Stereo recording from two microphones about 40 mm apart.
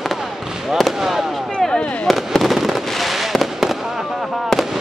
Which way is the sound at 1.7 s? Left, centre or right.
Left.